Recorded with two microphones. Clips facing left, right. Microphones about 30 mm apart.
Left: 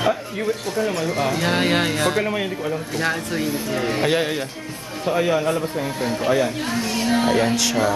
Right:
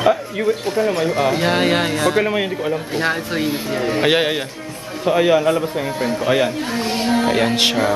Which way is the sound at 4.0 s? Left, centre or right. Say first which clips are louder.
Right 6 dB; right.